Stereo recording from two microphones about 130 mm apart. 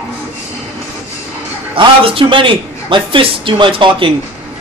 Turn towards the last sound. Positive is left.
turn(degrees=-40)  # may be behind; listen again after turning